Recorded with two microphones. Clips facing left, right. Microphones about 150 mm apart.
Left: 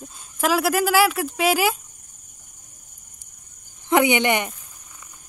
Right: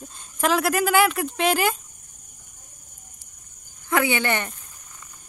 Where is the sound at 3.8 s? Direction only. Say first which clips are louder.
Left 4 dB; 20° left (ahead or behind).